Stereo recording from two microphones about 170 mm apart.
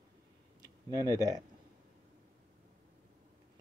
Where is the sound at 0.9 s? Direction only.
20° right (ahead or behind).